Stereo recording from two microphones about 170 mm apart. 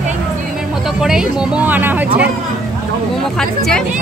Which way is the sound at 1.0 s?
5° right (ahead or behind).